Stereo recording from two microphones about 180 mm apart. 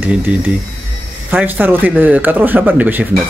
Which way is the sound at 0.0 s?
10° right (ahead or behind).